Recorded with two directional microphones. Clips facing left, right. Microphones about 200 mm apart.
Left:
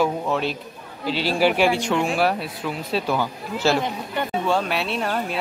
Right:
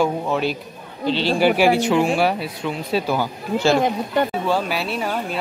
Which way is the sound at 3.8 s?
40° right (ahead or behind).